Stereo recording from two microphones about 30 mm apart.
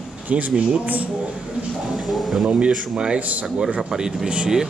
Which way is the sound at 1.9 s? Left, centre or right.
Centre.